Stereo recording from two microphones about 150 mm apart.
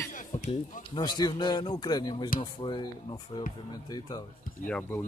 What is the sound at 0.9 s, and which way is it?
Speech, 30° left (ahead or behind).